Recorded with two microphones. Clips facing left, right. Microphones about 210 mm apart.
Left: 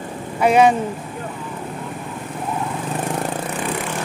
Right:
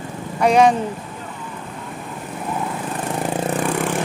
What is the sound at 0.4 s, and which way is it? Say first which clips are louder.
Speech: even; 5° left (ahead or behind).